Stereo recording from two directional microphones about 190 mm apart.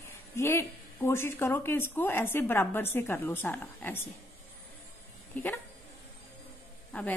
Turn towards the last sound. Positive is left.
turn(degrees=10)  # may be behind; listen again after turning